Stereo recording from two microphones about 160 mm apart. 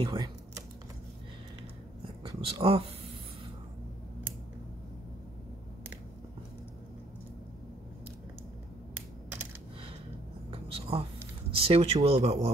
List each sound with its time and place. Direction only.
0.0 s speech: 25° right (ahead or behind)
2.2 s speech: 35° right (ahead or behind)
10.5 s whispering: 35° right (ahead or behind)
11.5 s speech: 35° right (ahead or behind)